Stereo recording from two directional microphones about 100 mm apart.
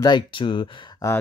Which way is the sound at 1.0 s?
35° left (ahead or behind).